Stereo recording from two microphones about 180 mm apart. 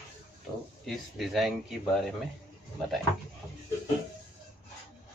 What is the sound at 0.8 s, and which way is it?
Speech, centre (ahead or behind).